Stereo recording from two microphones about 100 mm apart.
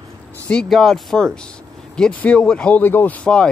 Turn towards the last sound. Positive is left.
turn(degrees=20)  # may be behind; listen again after turning